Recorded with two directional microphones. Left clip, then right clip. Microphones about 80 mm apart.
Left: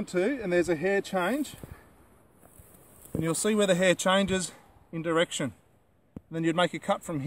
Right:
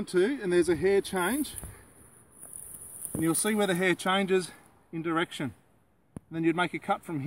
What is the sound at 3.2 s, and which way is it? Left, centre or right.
Speech, left.